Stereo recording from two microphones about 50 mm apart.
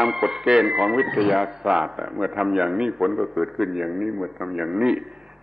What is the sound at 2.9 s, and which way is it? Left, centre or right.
A man's voice, centre.